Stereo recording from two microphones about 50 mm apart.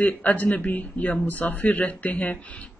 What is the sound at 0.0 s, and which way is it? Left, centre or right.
Speech, left.